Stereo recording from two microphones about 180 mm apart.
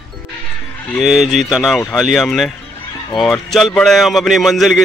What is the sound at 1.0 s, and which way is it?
A man's voice, centre (ahead or behind).